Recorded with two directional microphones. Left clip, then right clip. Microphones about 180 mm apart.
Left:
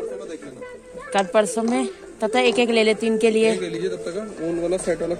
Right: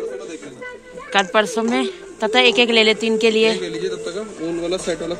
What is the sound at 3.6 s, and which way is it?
Speech, 35° left (ahead or behind).